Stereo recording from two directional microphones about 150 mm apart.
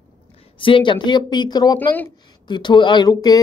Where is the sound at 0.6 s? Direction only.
35° left (ahead or behind).